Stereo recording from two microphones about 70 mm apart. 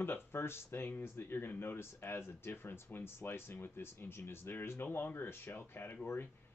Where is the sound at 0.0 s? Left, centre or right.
Left.